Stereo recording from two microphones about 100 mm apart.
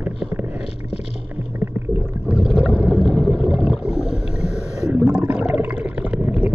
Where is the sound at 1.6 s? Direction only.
20° right (ahead or behind).